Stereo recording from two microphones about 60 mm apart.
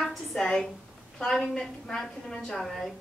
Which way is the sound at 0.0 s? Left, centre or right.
Centre.